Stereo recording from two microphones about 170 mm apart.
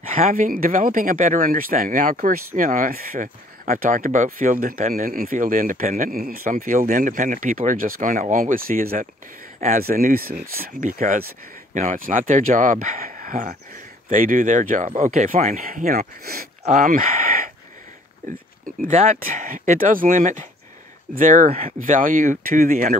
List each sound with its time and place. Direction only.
0.3 s speech: 55° right (ahead or behind)